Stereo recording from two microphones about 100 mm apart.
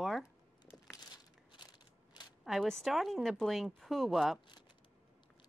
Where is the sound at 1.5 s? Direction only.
45° left (ahead or behind).